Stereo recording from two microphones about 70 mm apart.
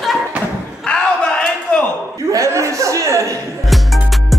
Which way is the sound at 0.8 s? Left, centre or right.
Centre.